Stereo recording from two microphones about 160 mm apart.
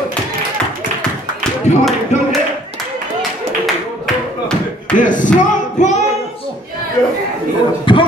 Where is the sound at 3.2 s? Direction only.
Centre (ahead or behind).